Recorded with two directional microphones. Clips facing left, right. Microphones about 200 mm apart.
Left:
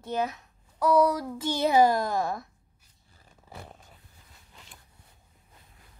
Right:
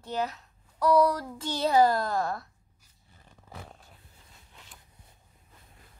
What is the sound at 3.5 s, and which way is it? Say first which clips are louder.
Roar: left 1 dB; 5° left (ahead or behind).